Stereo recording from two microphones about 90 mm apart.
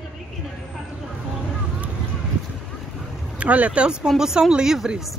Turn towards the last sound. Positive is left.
turn(degrees=-5)  # may be behind; listen again after turning